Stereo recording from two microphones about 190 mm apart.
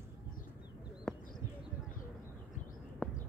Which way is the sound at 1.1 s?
5° left (ahead or behind).